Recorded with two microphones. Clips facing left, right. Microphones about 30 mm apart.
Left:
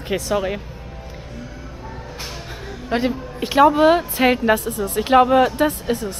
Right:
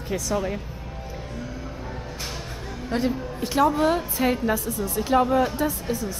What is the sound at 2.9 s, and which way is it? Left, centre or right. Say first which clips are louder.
A woman's voice: left 4 dB; left.